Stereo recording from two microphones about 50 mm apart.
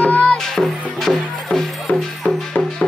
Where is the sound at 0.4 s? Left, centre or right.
Centre.